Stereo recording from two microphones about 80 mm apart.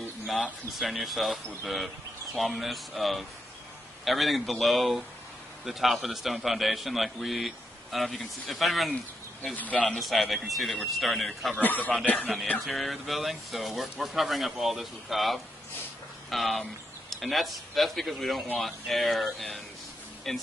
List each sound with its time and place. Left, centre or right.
0.3 s a man's voice: centre
8.9 s speech: centre
9.8 s a man's voice: centre
11.6 s speech: left
12.5 s a man's voice: centre